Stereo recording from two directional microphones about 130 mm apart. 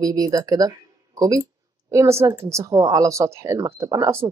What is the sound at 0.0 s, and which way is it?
A woman's voice, 30° right (ahead or behind).